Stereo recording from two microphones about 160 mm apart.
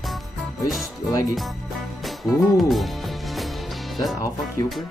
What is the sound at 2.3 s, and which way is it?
Music, 20° left (ahead or behind).